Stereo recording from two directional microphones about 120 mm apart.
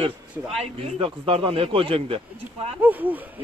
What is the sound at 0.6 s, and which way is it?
A man's voice, 50° right (ahead or behind).